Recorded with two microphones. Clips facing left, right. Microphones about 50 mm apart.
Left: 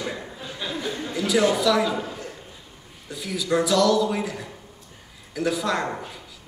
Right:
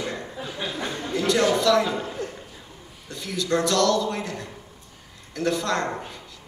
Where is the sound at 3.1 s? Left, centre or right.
Centre.